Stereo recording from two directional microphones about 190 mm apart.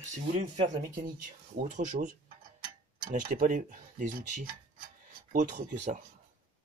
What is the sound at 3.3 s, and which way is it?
Speech, 45° right (ahead or behind).